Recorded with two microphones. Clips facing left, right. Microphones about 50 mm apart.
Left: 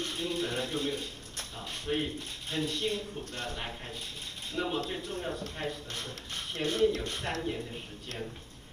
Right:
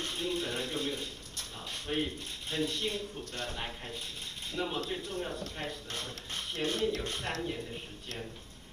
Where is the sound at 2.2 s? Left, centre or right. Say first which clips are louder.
Even; left.